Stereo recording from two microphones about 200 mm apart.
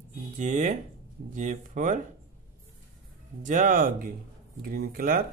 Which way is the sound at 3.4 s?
40° right (ahead or behind).